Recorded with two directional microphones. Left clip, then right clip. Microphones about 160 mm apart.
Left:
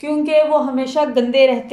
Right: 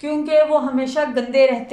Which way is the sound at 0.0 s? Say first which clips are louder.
Left 1 dB; 15° left (ahead or behind).